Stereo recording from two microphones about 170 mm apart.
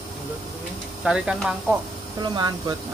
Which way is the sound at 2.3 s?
25° right (ahead or behind).